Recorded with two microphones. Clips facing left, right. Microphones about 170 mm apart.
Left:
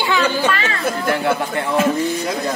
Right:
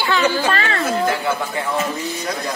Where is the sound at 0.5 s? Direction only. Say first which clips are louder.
Right 1 dB; 40° right (ahead or behind).